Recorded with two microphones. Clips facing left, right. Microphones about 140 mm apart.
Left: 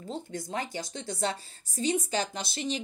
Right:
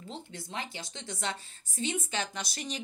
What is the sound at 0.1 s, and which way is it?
A woman's voice, 40° left (ahead or behind).